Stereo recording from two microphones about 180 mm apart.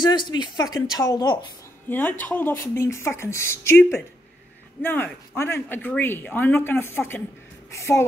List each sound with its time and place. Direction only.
0.0 s speech: 25° left (ahead or behind)
1.9 s speech: 10° left (ahead or behind)